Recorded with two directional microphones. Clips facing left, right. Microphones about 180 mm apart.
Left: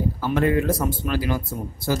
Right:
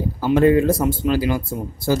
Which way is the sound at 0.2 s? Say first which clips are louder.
Right 7 dB; 25° right (ahead or behind).